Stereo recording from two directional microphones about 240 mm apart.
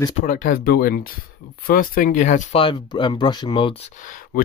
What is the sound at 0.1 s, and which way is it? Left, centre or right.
Speech, left.